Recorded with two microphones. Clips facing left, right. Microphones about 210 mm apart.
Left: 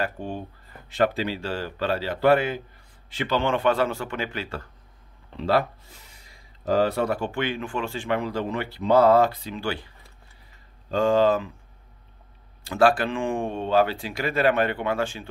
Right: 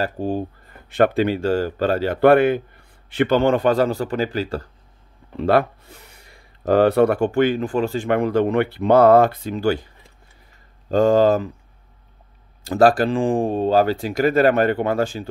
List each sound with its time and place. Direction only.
0.0 s speech: 35° right (ahead or behind)
0.8 s a man's voice: 55° right (ahead or behind); by 4.6 s 35° right (ahead or behind)
5.4 s speech: 55° right (ahead or behind)
10.9 s speech: 40° right (ahead or behind)
12.6 s speech: 40° right (ahead or behind)